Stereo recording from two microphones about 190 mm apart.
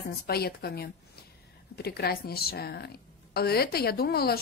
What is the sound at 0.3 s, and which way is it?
A woman's voice, 55° left (ahead or behind).